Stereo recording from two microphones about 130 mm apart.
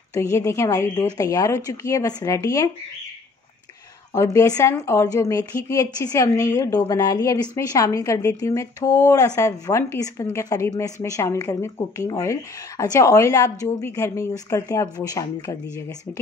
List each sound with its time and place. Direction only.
0.1 s a woman's voice: 25° left (ahead or behind)
4.1 s a woman's voice: 20° left (ahead or behind)